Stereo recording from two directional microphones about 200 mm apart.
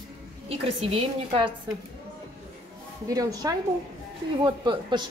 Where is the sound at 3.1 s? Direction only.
20° right (ahead or behind).